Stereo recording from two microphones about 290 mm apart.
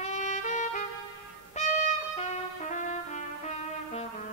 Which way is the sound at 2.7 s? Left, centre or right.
Left.